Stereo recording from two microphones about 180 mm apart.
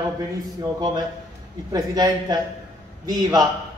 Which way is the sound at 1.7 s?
20° right (ahead or behind).